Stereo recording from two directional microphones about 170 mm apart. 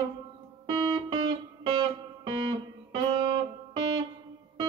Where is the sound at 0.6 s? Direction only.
25° right (ahead or behind).